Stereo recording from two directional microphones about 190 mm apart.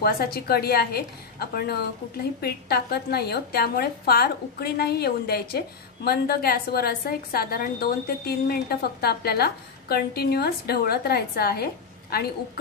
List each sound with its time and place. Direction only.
0.0 s a woman's voice: 55° left (ahead or behind)